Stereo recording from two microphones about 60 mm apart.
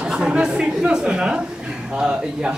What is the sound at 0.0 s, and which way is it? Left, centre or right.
A woman's voice, centre.